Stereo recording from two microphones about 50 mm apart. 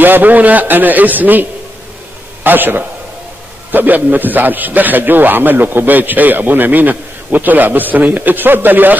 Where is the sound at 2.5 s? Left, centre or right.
Right.